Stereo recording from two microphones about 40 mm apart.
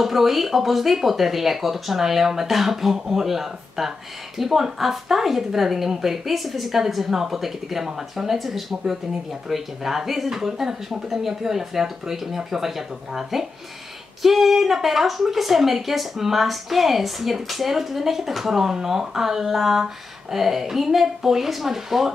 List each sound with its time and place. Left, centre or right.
0.0 s a woman's voice: centre